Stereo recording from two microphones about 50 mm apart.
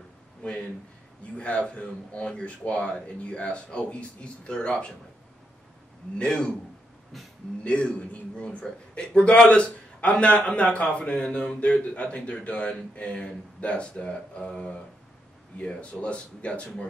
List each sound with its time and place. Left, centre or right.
1.3 s a man's voice: left
6.1 s a man's voice: centre
7.6 s a man's voice: left